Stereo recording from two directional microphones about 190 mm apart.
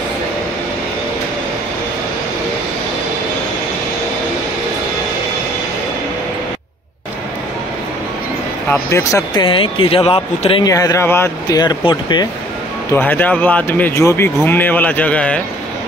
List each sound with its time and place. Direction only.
8.9 s speech: 20° left (ahead or behind)
10.7 s speech: 15° left (ahead or behind)
12.9 s speech: 10° left (ahead or behind)